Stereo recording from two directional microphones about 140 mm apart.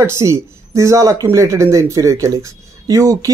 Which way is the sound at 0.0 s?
20° right (ahead or behind).